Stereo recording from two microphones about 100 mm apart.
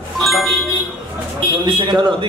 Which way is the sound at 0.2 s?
Centre (ahead or behind).